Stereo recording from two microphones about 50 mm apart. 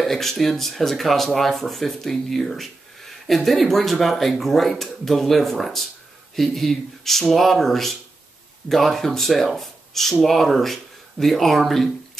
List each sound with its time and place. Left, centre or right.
0.0 s speech: centre